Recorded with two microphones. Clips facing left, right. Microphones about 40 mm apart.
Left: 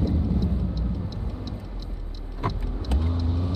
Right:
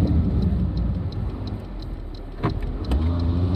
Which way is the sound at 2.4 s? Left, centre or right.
Centre.